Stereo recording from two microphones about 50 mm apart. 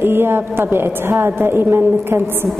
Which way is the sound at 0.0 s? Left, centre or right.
Right.